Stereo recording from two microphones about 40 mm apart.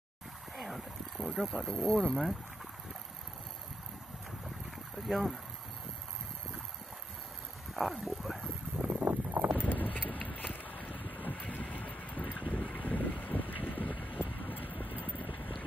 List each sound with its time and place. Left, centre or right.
0.6 s a sound: centre
2.1 s speech: centre
4.6 s boat: centre
7.7 s a sound: centre
9.0 s wind: right
9.6 s a sound: left
11.0 s boat: right
11.2 s boat: left
14.2 s vehicle: left